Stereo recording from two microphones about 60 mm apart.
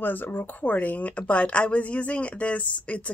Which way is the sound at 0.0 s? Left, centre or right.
Left.